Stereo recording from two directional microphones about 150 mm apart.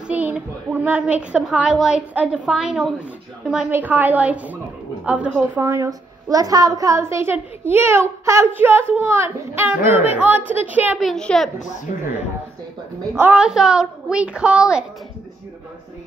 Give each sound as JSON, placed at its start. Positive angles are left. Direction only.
{"t": 0.0, "sound": "a woman's voice", "side_deg": -10}
{"t": 5.6, "sound": "a woman's voice", "side_deg": -20}
{"t": 11.1, "sound": "a woman's voice", "side_deg": 5}
{"t": 11.9, "sound": "speech", "side_deg": 55}
{"t": 13.2, "sound": "a woman's voice", "side_deg": -5}